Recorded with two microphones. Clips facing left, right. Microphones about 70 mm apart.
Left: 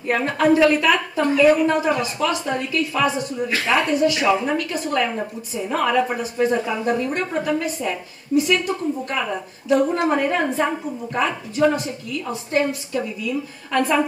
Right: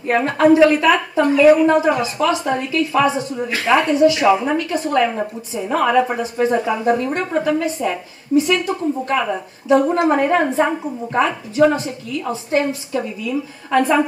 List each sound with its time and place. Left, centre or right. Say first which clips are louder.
0.1 s a woman's voice: right 4 dB; centre; by 3.8 s right
3.8 s a woman's voice: right 5 dB; centre
7.2 s a woman's voice: right 4 dB; centre
11.2 s a woman's voice: right 2 dB; centre
12.3 s a woman's voice: right 2 dB; centre